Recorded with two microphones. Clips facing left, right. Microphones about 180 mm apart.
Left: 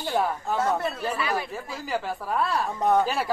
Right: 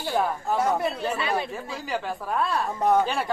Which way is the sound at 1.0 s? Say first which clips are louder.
Right 1 dB; 25° right (ahead or behind).